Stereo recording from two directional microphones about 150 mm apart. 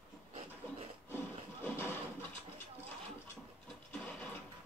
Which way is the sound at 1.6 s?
15° left (ahead or behind).